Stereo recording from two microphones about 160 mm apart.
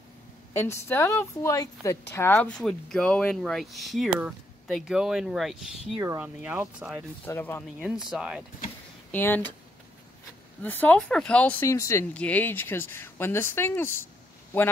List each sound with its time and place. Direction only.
0.6 s a woman's voice: 15° left (ahead or behind); by 5.9 s centre (ahead or behind)
5.9 s speech: 20° right (ahead or behind)
7.2 s a woman's voice: 15° left (ahead or behind)
7.8 s speech: 5° right (ahead or behind)
9.1 s a woman's voice: 10° left (ahead or behind)
10.6 s a woman's voice: 10° left (ahead or behind)